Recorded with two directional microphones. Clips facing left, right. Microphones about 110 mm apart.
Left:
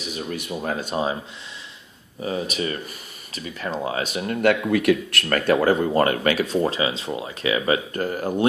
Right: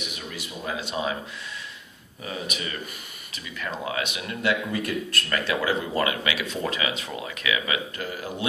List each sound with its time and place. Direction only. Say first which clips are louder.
0.3 s speech: left 6 dB; 50° left (ahead or behind)
2.2 s speech: left 7 dB; 35° left (ahead or behind)
4.4 s speech: left 6 dB; 60° left (ahead or behind)
5.5 s speech: left 9 dB; 45° left (ahead or behind)